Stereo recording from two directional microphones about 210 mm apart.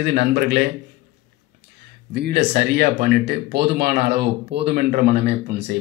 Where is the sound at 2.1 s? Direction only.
50° right (ahead or behind).